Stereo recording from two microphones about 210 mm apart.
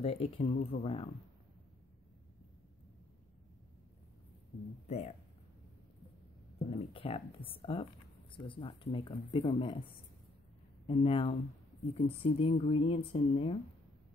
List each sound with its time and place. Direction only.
0.0 s speech: 30° left (ahead or behind)
4.8 s speech: 30° left (ahead or behind)
6.7 s speech: 25° left (ahead or behind)
10.9 s speech: 25° left (ahead or behind)